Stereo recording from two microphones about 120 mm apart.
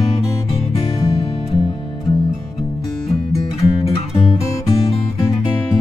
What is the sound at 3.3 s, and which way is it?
Music, 25° left (ahead or behind).